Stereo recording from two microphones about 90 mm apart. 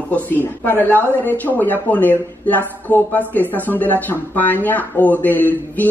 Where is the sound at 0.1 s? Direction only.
20° left (ahead or behind).